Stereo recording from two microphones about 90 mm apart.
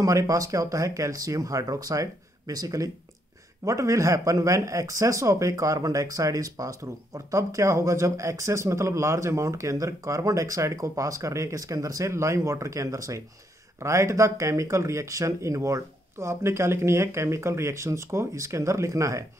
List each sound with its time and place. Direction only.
0.0 s speech: 40° right (ahead or behind)